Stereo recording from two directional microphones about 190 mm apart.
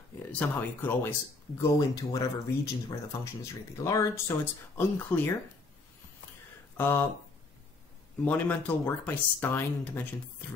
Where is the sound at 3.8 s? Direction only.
15° left (ahead or behind).